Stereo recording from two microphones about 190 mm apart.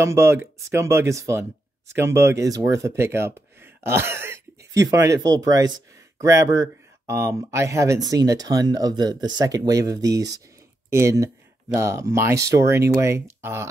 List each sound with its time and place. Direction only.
0.0 s speech: 15° right (ahead or behind)